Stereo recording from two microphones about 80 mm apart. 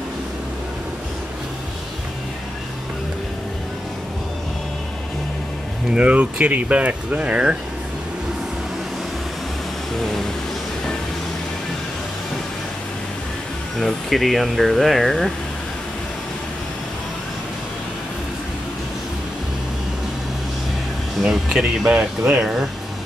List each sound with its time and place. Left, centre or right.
5.9 s speech: centre
13.7 s speech: centre
21.2 s speech: centre